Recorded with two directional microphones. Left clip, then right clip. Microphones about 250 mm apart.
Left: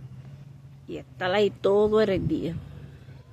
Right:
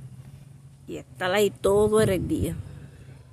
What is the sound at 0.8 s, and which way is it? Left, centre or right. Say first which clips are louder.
Speech: right 1 dB; centre.